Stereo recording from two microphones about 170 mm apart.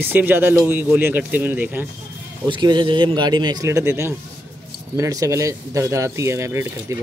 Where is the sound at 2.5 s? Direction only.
25° right (ahead or behind).